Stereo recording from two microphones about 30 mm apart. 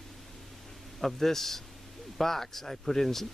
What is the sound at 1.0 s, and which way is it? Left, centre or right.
Speech, centre.